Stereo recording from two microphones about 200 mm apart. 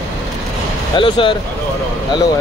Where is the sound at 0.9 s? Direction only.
25° left (ahead or behind).